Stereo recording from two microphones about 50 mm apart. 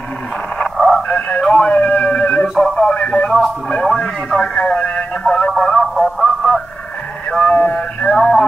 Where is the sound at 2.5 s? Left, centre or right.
Centre.